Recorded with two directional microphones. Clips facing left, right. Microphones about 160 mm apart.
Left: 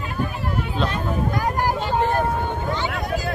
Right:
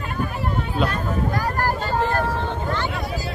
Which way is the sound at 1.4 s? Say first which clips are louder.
Left 1 dB; 15° left (ahead or behind).